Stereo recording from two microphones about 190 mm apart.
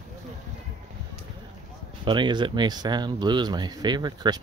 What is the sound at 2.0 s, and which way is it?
Speech, 25° right (ahead or behind).